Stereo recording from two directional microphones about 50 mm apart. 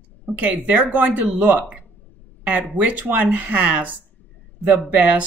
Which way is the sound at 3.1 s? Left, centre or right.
Right.